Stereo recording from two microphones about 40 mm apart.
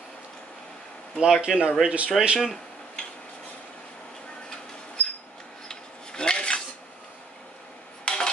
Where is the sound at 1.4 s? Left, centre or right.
Right.